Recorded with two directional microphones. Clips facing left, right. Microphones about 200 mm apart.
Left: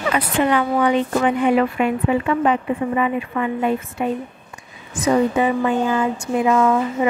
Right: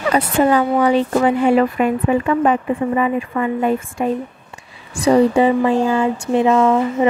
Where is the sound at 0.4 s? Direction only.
40° right (ahead or behind).